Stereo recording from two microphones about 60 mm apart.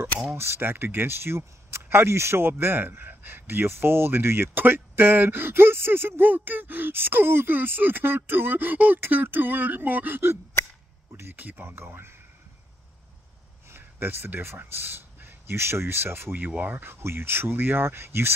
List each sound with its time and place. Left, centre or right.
0.3 s speech: right
13.7 s speech: right